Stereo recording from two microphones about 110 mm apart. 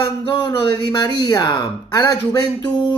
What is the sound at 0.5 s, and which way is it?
Speech, 35° left (ahead or behind).